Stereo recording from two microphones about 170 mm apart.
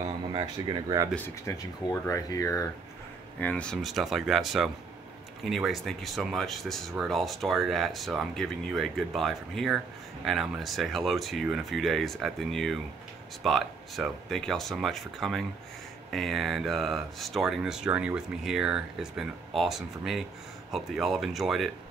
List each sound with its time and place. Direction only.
0.0 s speech: 25° right (ahead or behind)
1.1 s speech: 15° left (ahead or behind)
3.3 s speech: 10° left (ahead or behind)